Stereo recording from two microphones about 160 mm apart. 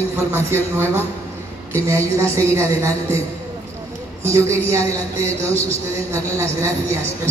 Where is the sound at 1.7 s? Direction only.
15° right (ahead or behind).